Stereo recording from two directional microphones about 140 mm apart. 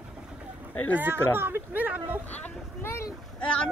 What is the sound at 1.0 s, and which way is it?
Speech, 15° right (ahead or behind).